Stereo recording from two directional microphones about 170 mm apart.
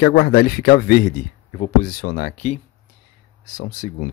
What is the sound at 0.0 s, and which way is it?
Speech, 60° left (ahead or behind).